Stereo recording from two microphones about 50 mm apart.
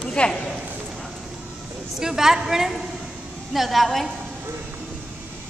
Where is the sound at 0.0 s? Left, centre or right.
Left.